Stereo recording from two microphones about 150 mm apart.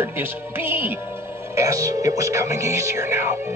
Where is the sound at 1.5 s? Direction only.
20° right (ahead or behind).